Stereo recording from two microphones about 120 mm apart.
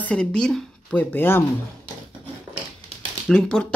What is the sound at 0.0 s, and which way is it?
Speech, 10° left (ahead or behind).